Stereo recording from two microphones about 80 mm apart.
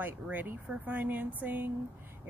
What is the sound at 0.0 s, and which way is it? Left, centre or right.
Speech, right.